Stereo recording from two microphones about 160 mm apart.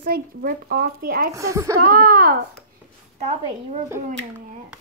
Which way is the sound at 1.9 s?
65° right (ahead or behind).